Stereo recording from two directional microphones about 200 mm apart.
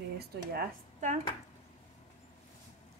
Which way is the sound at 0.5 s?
50° right (ahead or behind).